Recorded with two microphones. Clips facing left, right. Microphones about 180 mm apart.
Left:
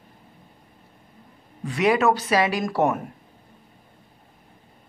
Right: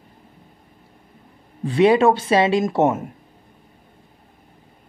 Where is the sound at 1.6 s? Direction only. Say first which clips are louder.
Right 6 dB; 30° right (ahead or behind).